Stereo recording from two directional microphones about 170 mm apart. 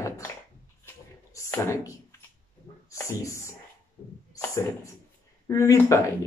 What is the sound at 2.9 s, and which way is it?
Speech, 15° left (ahead or behind).